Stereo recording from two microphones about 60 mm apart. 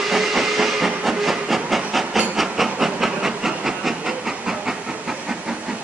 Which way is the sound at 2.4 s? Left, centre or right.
Centre.